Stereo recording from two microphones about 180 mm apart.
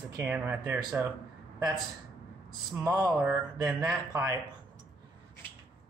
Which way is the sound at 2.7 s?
5° right (ahead or behind).